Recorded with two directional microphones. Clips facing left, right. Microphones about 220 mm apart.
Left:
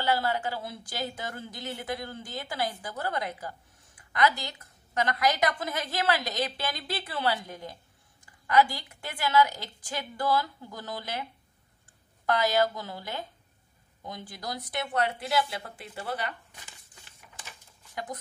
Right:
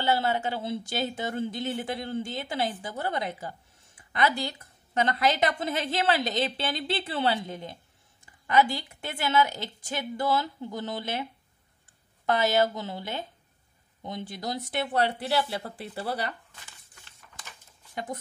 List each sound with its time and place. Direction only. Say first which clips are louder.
0.0 s speech: right 2 dB; 25° right (ahead or behind)
12.3 s speech: right 1 dB; 25° right (ahead or behind)